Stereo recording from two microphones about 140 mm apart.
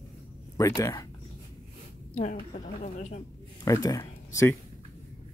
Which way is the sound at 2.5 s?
60° left (ahead or behind).